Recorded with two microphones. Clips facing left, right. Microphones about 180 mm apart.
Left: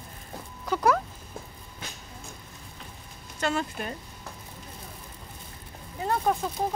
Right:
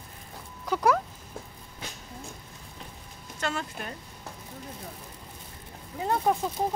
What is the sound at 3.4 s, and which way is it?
Speech, 10° left (ahead or behind).